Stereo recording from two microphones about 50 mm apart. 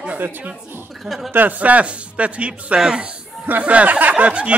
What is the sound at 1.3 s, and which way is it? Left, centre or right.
Speech, right.